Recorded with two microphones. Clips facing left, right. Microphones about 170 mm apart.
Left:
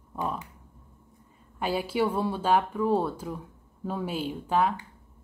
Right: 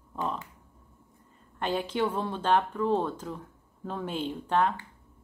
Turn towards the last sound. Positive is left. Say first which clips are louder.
# left 1 dB
turn(degrees=5)  # may be behind; listen again after turning